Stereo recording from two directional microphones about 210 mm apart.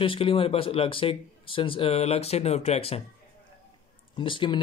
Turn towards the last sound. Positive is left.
turn(degrees=25)  # may be behind; listen again after turning